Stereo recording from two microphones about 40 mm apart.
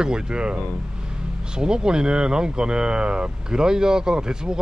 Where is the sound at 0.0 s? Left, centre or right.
Centre.